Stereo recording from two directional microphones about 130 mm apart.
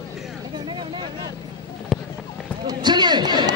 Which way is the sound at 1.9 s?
Centre (ahead or behind).